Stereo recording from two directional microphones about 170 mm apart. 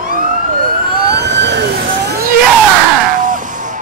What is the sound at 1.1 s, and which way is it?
Vehicle, 85° right.